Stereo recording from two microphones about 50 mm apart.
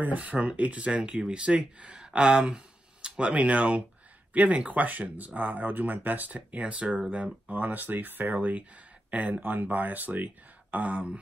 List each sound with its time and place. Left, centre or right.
0.0 s speech: right
7.4 s speech: right